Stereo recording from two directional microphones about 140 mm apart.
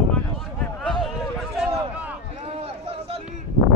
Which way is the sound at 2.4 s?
45° right (ahead or behind).